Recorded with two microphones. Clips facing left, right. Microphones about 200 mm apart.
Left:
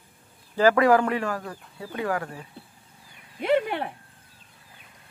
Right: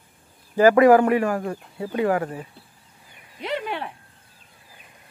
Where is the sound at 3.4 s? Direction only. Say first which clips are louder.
Left 5 dB; 50° left (ahead or behind).